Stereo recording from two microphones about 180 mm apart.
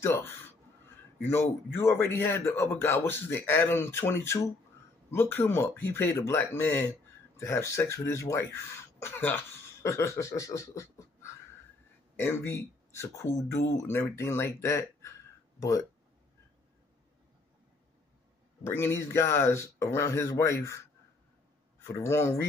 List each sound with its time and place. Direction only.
0.0 s speech: 10° left (ahead or behind)
12.2 s speech: 15° left (ahead or behind)
18.6 s speech: 15° left (ahead or behind)
21.8 s speech: 15° left (ahead or behind)